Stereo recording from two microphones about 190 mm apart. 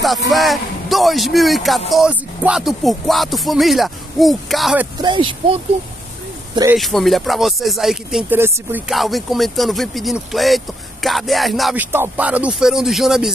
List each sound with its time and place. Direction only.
0.0 s speech: centre (ahead or behind)
5.0 s speech: 25° right (ahead or behind)
6.8 s speech: centre (ahead or behind)